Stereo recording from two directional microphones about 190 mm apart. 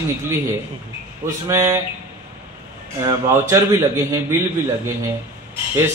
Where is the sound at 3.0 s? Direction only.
15° right (ahead or behind).